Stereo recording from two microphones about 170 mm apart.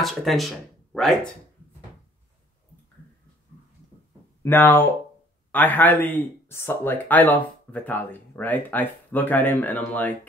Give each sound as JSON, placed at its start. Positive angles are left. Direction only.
{"t": 0.0, "sound": "speech", "side_deg": 0}
{"t": 4.4, "sound": "speech", "side_deg": 10}